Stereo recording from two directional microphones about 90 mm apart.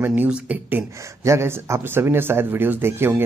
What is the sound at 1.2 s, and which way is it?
Speech, 35° right (ahead or behind).